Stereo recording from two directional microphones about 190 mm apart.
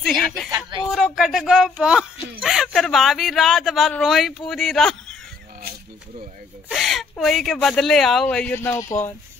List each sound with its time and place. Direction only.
0.5 s a sound: 20° right (ahead or behind)
0.9 s speech: centre (ahead or behind)
6.7 s speech: centre (ahead or behind)